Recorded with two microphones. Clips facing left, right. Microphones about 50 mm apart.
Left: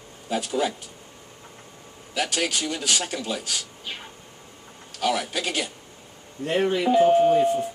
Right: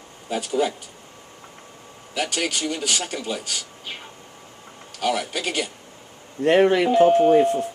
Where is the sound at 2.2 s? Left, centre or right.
Centre.